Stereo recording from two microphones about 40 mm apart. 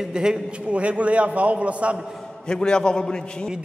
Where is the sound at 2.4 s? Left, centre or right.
Centre.